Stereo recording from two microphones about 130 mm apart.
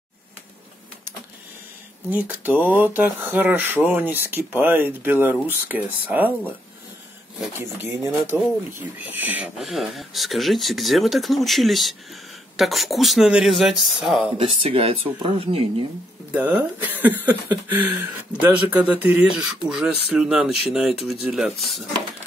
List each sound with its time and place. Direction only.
2.0 s speech: 15° right (ahead or behind)
7.8 s speech: 20° right (ahead or behind)
9.6 s speech: centre (ahead or behind)
14.4 s speech: 45° right (ahead or behind)
16.3 s speech: 10° right (ahead or behind)